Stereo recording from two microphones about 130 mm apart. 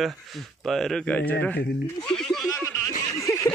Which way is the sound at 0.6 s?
5° left (ahead or behind).